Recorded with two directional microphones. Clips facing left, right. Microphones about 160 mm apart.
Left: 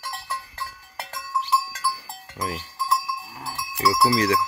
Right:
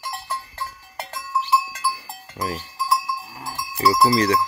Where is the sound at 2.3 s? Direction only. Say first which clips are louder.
Right 2 dB; 5° right (ahead or behind).